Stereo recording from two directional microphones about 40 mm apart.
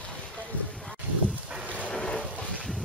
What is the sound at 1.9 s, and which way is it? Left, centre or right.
Boat, centre.